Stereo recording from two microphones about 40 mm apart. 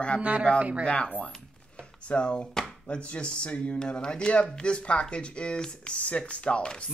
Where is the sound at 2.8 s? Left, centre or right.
Left.